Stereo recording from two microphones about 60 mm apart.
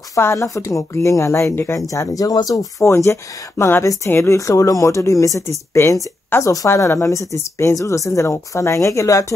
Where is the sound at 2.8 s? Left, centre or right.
Left.